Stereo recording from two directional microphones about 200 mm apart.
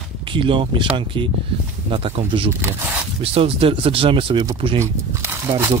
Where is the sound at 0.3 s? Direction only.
25° right (ahead or behind).